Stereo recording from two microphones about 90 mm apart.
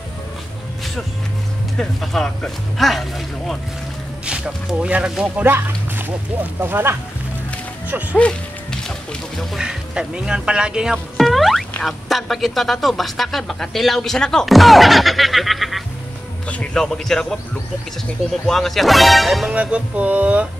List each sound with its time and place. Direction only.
1.8 s speech: 5° left (ahead or behind)
4.3 s speech: 10° right (ahead or behind)
5.4 s speech: 20° right (ahead or behind)
8.2 s music: 10° left (ahead or behind)
9.5 s speech: 10° right (ahead or behind)
16.4 s speech: 15° left (ahead or behind)
18.5 s speech: 5° left (ahead or behind)
19.5 s speech: 15° right (ahead or behind)